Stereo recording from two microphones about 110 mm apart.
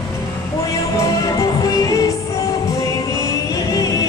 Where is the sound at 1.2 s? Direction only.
30° left (ahead or behind).